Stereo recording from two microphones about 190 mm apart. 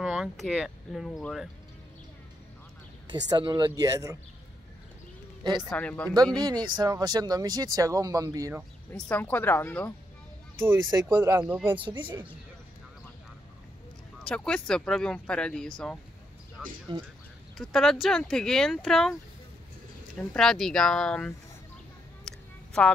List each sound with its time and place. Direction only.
0.0 s speech: 5° right (ahead or behind)
3.1 s speech: 25° right (ahead or behind)
5.4 s a man's voice: 25° right (ahead or behind)
5.7 s speech: 5° left (ahead or behind)
6.3 s speech: 20° right (ahead or behind)
8.9 s speech: 10° left (ahead or behind)
10.8 s speech: 20° right (ahead or behind)
11.4 s speech: 5° right (ahead or behind)
11.7 s speech: 25° right (ahead or behind)
14.2 s speech: 5° left (ahead or behind)
16.6 s a sound: 5° right (ahead or behind)
17.6 s speech: centre (ahead or behind)
20.2 s speech: 5° left (ahead or behind)
22.2 s a sound: 5° left (ahead or behind)